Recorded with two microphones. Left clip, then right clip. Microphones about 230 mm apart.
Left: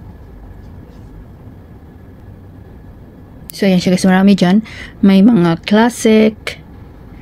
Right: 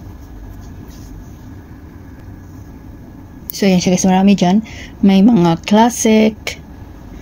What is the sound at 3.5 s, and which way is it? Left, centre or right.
A woman's voice, centre.